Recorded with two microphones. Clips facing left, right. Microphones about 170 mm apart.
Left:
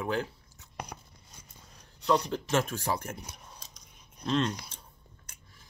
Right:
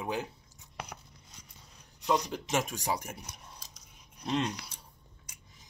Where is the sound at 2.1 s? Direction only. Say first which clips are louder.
Left 3 dB; 15° right (ahead or behind).